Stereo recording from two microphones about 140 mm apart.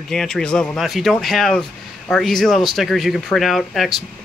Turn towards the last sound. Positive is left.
turn(degrees=0)  # may be behind; listen again after turning